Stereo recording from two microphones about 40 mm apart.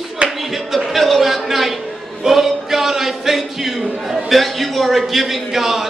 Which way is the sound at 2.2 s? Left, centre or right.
Centre.